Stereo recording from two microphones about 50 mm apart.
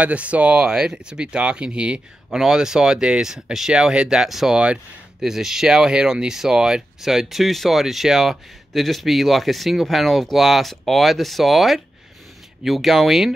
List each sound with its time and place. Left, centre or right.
0.0 s speech: right
4.2 s speech: centre